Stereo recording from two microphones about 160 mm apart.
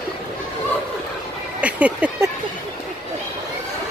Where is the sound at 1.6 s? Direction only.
10° right (ahead or behind).